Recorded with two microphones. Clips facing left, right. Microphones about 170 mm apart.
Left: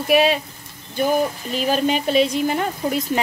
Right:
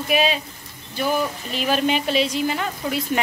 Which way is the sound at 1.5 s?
40° left (ahead or behind).